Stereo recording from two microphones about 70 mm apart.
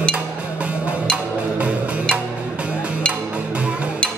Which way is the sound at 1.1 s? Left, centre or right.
Centre.